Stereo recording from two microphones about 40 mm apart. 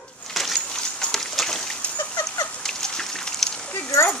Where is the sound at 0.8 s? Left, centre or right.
Centre.